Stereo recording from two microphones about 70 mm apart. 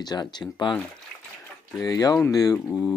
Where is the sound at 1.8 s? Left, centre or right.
Left.